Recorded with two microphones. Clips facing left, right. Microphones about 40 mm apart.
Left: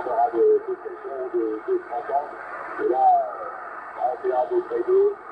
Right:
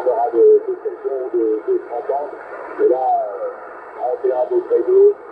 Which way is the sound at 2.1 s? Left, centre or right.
Centre.